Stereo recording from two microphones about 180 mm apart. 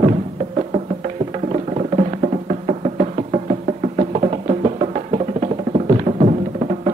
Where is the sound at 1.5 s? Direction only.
40° right (ahead or behind).